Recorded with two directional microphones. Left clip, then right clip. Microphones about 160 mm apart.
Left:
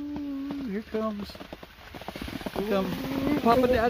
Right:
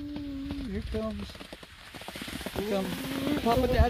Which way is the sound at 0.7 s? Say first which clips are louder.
Left 4 dB; centre (ahead or behind).